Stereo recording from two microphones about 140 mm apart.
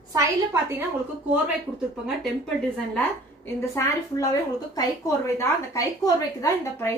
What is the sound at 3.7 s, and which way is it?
A woman's voice, 20° left (ahead or behind).